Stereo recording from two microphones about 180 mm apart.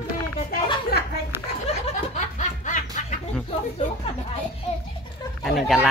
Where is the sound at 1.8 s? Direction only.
40° left (ahead or behind).